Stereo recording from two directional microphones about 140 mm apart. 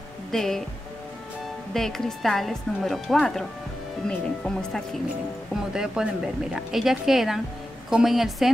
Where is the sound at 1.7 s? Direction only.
5° left (ahead or behind).